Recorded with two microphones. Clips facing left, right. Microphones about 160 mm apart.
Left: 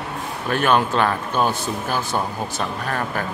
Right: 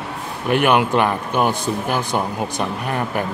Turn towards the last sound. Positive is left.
turn(degrees=-15)  # may be behind; listen again after turning